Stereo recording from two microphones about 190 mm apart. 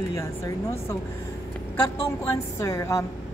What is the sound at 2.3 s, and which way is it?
Speech, 15° left (ahead or behind).